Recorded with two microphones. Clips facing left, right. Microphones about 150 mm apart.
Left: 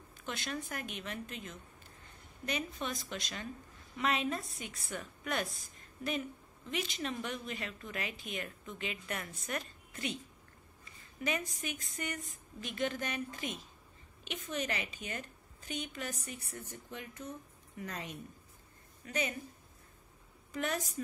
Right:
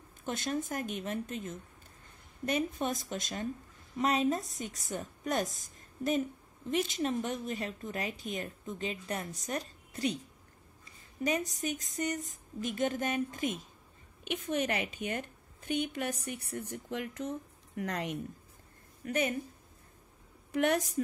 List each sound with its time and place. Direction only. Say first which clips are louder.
0.2 s a woman's voice: right 6 dB; 45° right (ahead or behind)
11.2 s a woman's voice: right 5 dB; 40° right (ahead or behind); by 16.3 s 60° right (ahead or behind)
16.7 s speech: right 9 dB; 85° right
19.0 s a woman's voice: right 5 dB; 55° right (ahead or behind)
20.5 s a woman's voice: right 8 dB; 65° right (ahead or behind)